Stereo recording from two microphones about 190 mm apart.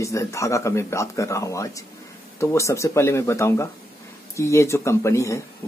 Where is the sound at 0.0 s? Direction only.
15° left (ahead or behind).